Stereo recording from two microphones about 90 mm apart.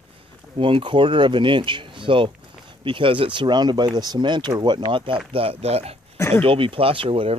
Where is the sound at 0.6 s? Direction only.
70° right (ahead or behind).